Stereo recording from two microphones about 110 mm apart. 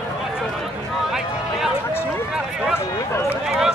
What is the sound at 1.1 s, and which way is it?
Speech, 5° right (ahead or behind).